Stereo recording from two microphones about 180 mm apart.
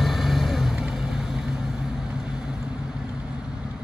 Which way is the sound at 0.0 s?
Centre (ahead or behind).